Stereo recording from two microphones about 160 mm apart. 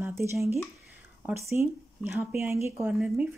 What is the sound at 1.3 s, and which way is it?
Speech, 15° right (ahead or behind).